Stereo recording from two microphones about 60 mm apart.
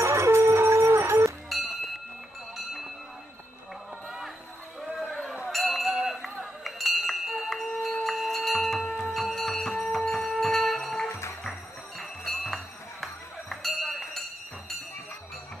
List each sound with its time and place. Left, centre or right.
0.0 s music: right
1.5 s chink: centre
2.5 s a sound: centre
5.0 s a sound: centre
5.5 s a sound: centre
6.2 s chink: centre
8.9 s bell: centre
11.1 s music: left
12.0 s music: centre